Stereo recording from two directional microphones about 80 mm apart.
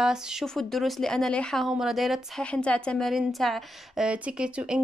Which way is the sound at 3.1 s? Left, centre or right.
Centre.